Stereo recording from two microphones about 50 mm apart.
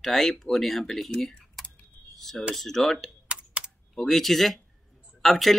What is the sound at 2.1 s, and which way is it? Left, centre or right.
Speech, centre.